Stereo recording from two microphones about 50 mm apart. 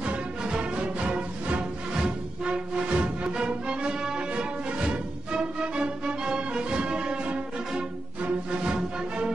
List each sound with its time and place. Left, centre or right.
0.0 s music: right